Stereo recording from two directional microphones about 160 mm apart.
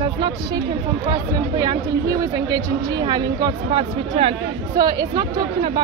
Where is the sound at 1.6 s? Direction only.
25° right (ahead or behind).